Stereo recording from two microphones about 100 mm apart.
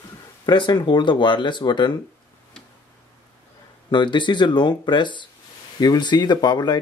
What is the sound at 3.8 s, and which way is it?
Speech, 50° left (ahead or behind).